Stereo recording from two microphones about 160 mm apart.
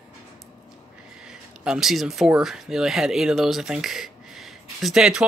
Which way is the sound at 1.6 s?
5° right (ahead or behind).